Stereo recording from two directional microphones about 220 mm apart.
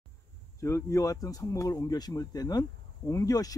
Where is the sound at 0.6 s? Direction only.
15° left (ahead or behind).